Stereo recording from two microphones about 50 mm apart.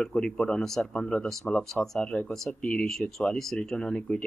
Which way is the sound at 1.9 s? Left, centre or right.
Centre.